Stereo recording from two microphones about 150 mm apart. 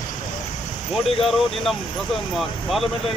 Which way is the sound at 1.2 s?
Centre (ahead or behind).